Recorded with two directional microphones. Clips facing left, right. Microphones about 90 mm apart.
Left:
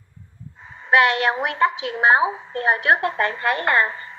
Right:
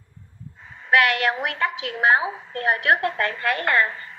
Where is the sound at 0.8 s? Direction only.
25° left (ahead or behind).